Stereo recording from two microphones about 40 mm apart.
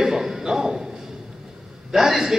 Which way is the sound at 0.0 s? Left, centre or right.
Centre.